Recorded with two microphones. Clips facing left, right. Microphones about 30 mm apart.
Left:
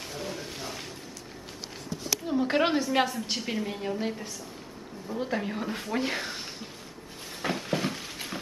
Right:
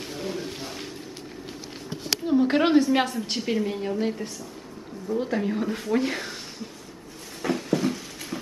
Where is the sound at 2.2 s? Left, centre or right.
Centre.